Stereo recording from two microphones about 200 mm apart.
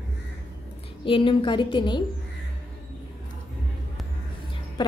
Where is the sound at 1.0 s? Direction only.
25° left (ahead or behind).